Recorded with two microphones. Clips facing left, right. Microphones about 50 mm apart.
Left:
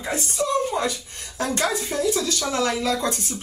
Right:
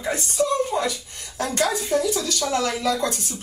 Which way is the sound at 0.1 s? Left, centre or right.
Left.